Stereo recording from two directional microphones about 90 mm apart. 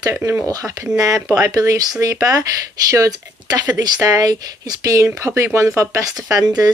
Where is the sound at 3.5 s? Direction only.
45° right (ahead or behind).